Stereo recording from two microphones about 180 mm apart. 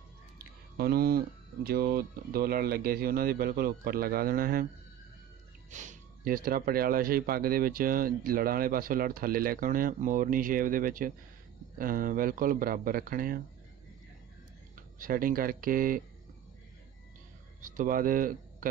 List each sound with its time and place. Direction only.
0.7 s speech: 60° right (ahead or behind)
5.7 s speech: 45° right (ahead or behind)
15.0 s speech: 50° right (ahead or behind)
17.6 s speech: 50° right (ahead or behind)